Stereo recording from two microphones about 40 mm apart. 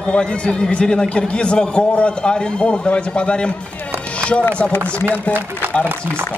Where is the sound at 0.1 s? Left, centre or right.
Left.